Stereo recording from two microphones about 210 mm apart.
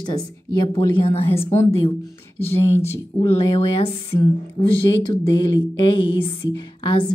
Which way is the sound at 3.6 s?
25° left (ahead or behind).